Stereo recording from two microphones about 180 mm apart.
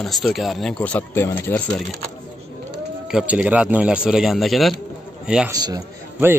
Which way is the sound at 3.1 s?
5° right (ahead or behind).